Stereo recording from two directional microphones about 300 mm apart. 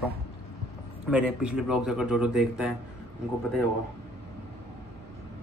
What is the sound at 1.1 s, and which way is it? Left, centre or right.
Speech, centre.